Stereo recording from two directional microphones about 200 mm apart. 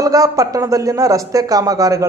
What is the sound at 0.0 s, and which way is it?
Speech, 15° right (ahead or behind).